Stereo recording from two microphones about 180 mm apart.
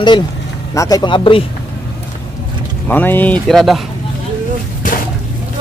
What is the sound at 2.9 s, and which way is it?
Speech, 10° left (ahead or behind).